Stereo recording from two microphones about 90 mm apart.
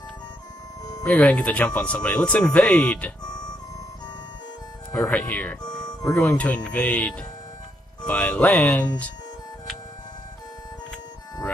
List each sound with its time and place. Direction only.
1.0 s speech: 10° left (ahead or behind)
5.1 s speech: 15° left (ahead or behind)